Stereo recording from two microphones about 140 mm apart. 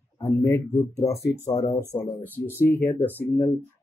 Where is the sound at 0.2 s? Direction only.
20° left (ahead or behind).